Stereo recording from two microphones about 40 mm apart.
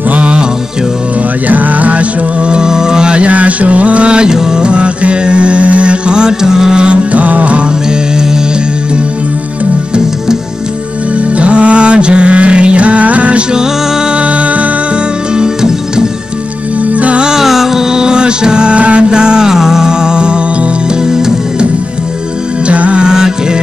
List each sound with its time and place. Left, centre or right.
0.1 s music: right
1.5 s music: right
2.5 s music: centre
6.8 s music: right
7.9 s music: centre
11.3 s music: right
15.3 s music: centre
16.9 s music: right
17.2 s music: centre
18.8 s music: right
19.0 s music: centre
22.7 s music: right
23.0 s music: centre